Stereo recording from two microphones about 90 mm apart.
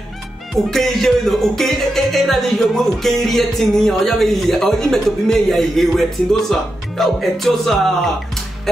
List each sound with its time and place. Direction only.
0.7 s music: 5° left (ahead or behind)